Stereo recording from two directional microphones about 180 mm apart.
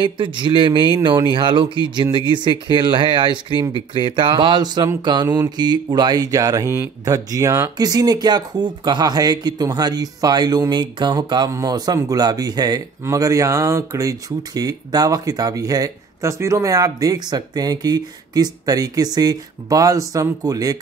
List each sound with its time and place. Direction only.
0.0 s speech: 25° right (ahead or behind)